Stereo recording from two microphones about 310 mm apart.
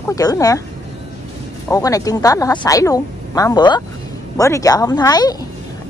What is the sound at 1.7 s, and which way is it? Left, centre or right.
Speech, centre.